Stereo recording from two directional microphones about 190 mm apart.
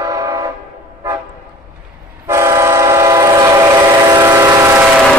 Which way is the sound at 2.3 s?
15° right (ahead or behind).